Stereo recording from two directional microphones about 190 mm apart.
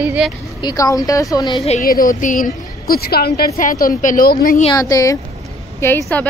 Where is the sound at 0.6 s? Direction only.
15° left (ahead or behind).